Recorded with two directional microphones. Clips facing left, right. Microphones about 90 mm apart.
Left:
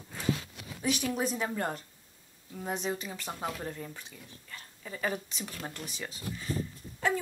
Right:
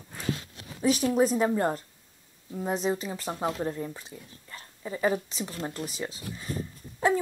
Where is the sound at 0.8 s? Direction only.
35° right (ahead or behind).